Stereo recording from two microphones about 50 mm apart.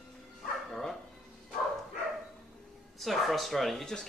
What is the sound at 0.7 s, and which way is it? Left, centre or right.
Bow-wow, centre.